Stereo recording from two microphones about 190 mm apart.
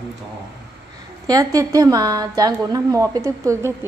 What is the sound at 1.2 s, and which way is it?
A woman's voice, 20° right (ahead or behind).